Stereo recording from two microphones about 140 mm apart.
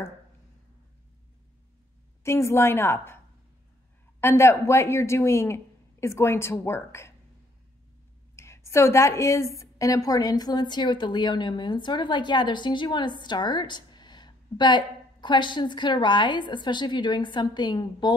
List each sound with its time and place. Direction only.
2.2 s speech: 20° left (ahead or behind)
4.2 s speech: 20° left (ahead or behind)
8.4 s a woman's voice: 20° left (ahead or behind)